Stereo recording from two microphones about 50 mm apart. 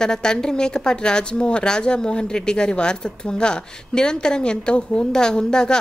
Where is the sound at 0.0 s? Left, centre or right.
Centre.